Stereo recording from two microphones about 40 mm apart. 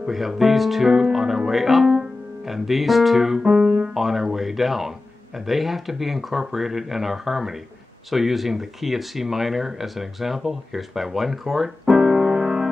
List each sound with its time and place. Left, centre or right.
0.1 s speech: centre
12.0 s music: centre